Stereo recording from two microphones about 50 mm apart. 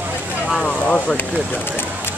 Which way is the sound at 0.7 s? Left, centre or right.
Left.